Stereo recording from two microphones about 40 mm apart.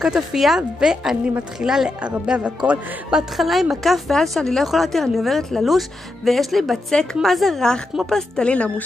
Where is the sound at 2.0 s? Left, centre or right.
Right.